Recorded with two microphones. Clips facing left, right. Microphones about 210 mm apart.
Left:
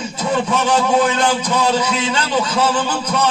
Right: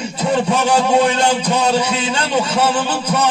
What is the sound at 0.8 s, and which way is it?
Speech, 30° right (ahead or behind).